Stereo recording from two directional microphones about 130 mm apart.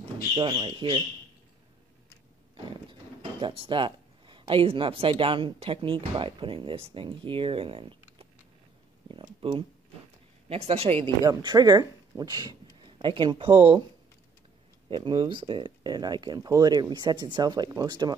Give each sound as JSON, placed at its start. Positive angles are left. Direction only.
{"t": 0.0, "sound": "speech", "side_deg": -40}
{"t": 2.5, "sound": "speech", "side_deg": -40}
{"t": 9.1, "sound": "a sound", "side_deg": -45}
{"t": 10.5, "sound": "speech", "side_deg": -50}
{"t": 11.2, "sound": "speech", "side_deg": -30}
{"t": 14.9, "sound": "speech", "side_deg": -35}